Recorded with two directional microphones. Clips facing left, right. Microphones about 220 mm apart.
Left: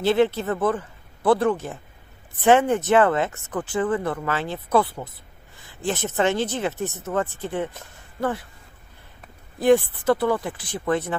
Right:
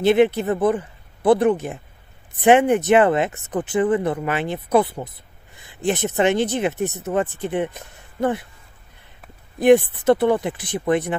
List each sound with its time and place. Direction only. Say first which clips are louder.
0.0 s speech: right 4 dB; 15° right (ahead or behind)
9.6 s speech: right 4 dB; 20° right (ahead or behind)